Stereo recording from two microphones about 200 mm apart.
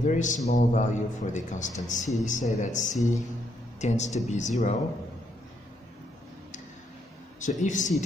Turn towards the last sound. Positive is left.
turn(degrees=40)  # may be behind; listen again after turning